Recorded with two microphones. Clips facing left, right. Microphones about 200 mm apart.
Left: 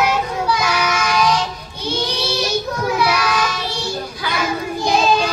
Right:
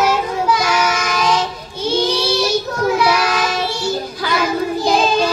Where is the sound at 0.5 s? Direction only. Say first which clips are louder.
Right 2 dB; 50° right (ahead or behind).